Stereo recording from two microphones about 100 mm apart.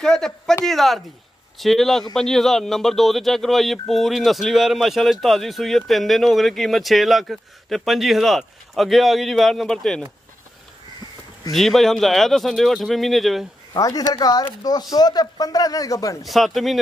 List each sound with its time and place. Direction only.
0.0 s a man's voice: 5° left (ahead or behind)
11.5 s speech: centre (ahead or behind)
13.7 s a man's voice: 35° left (ahead or behind)
16.3 s speech: centre (ahead or behind)